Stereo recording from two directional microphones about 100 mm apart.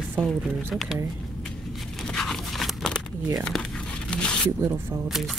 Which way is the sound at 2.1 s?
5° left (ahead or behind).